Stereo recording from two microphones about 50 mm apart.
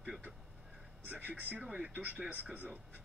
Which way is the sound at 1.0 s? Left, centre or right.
Right.